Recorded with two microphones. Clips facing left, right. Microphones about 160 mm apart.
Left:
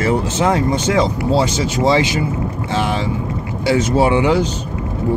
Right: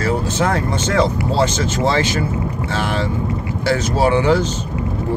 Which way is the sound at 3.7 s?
20° left (ahead or behind).